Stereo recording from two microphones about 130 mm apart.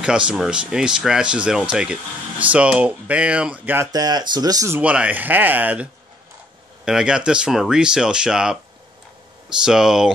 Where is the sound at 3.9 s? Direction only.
30° right (ahead or behind).